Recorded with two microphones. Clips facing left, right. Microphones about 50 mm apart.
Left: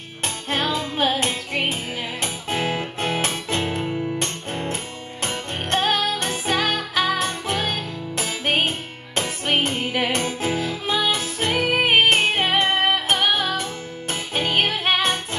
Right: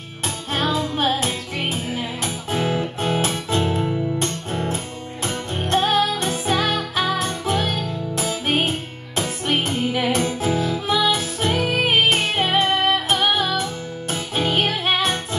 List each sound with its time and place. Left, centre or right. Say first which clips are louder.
0.2 s music: right 1 dB; left